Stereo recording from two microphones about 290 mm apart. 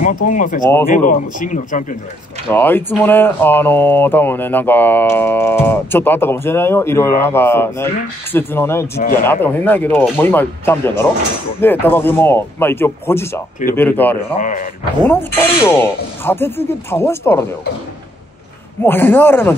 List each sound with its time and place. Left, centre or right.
0.0 s a man's voice: left
2.5 s speech: centre
14.4 s a man's voice: left
15.0 s speech: centre
18.8 s speech: centre